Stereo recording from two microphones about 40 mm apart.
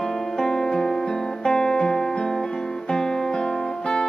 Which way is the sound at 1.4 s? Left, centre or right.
Centre.